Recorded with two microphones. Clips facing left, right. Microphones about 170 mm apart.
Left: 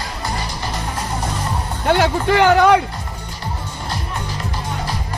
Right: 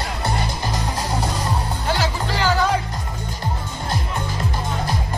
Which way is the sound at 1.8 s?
60° left (ahead or behind).